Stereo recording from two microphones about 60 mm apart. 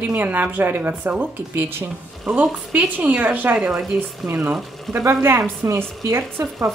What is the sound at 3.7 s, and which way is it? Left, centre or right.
Speech, centre.